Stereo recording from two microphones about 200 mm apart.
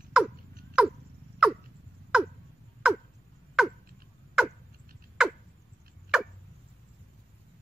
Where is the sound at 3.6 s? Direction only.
Centre (ahead or behind).